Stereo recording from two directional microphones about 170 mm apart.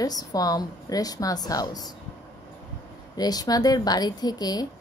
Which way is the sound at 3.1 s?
20° left (ahead or behind).